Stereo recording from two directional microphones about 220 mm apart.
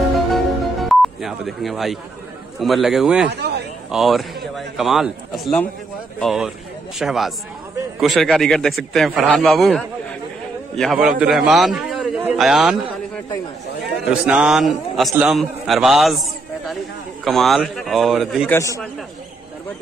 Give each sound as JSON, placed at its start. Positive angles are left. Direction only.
{"t": 0.3, "sound": "music", "side_deg": 0}
{"t": 2.6, "sound": "a man's voice", "side_deg": 0}
{"t": 3.3, "sound": "a sound", "side_deg": -50}
{"t": 3.9, "sound": "a man's voice", "side_deg": 0}
{"t": 14.2, "sound": "a man's voice", "side_deg": -5}